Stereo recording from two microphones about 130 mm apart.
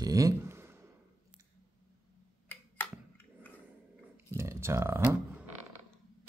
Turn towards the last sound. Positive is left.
turn(degrees=-15)  # may be behind; listen again after turning